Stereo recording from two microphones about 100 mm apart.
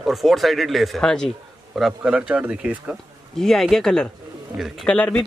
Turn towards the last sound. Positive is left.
turn(degrees=15)  # may be behind; listen again after turning